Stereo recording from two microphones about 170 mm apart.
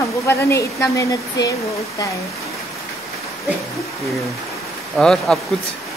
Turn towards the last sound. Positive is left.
turn(degrees=5)  # may be behind; listen again after turning